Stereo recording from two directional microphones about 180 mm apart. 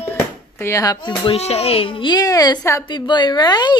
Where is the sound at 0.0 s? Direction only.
10° left (ahead or behind).